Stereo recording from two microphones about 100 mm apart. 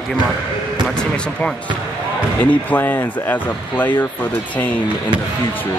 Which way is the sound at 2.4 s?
15° left (ahead or behind).